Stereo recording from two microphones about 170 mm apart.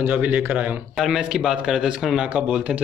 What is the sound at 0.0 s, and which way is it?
A man's voice, 10° right (ahead or behind).